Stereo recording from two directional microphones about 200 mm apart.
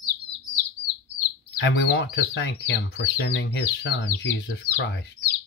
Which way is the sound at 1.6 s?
65° left (ahead or behind).